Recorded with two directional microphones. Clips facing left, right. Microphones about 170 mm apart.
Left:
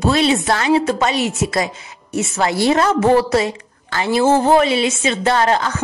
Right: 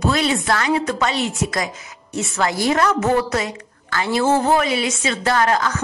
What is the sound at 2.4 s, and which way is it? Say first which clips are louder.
A woman's voice: left 3 dB; 25° left (ahead or behind).